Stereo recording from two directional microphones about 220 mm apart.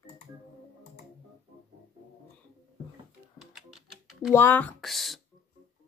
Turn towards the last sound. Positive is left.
turn(degrees=0)  # may be behind; listen again after turning